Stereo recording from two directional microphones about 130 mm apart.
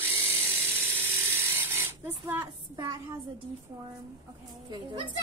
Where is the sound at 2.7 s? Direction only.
30° right (ahead or behind).